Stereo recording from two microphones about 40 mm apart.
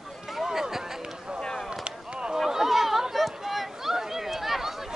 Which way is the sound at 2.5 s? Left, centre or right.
Centre.